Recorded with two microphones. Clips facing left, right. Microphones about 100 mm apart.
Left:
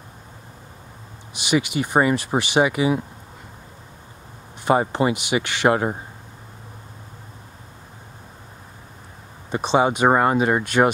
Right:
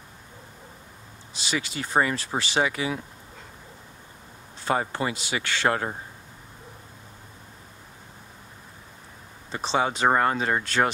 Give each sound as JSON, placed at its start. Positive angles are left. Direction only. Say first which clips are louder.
{"t": 1.3, "sound": "speech", "louder": "left 9 dB", "side_deg": 15}
{"t": 4.6, "sound": "speech", "louder": "left 7 dB", "side_deg": 20}
{"t": 9.5, "sound": "speech", "louder": "left 6 dB", "side_deg": 15}